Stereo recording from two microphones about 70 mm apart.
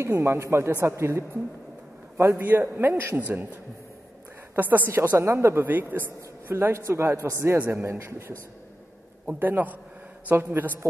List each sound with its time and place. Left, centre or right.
0.0 s a man's voice: right
2.4 s a man's voice: right
4.6 s a man's voice: right
5.1 s a man's voice: right
9.4 s a man's voice: right